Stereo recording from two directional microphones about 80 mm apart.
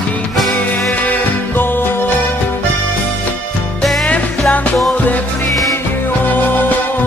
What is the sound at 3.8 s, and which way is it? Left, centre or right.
Music, centre.